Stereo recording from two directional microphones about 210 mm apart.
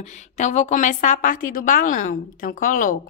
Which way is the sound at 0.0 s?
35° left (ahead or behind).